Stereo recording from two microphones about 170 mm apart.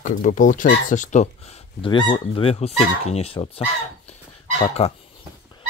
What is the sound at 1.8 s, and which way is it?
Speech, 25° left (ahead or behind).